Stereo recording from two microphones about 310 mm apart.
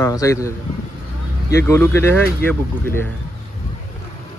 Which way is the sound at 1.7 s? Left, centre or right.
Centre.